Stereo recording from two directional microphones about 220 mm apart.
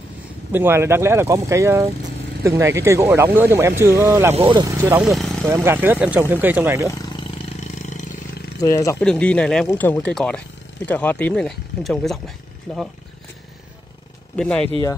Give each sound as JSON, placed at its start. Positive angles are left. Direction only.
{"t": 0.5, "sound": "speech", "side_deg": -10}
{"t": 5.4, "sound": "speech", "side_deg": -10}
{"t": 7.6, "sound": "vehicle", "side_deg": 35}
{"t": 8.5, "sound": "speech", "side_deg": 15}
{"t": 9.0, "sound": "speech", "side_deg": 5}
{"t": 14.3, "sound": "speech", "side_deg": 5}